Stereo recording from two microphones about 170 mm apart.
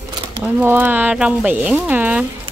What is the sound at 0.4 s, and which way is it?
Speech, 10° right (ahead or behind).